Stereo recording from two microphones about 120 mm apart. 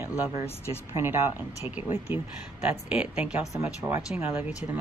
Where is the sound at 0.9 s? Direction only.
20° right (ahead or behind).